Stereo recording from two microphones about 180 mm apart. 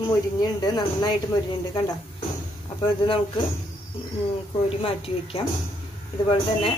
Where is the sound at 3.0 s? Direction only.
25° left (ahead or behind).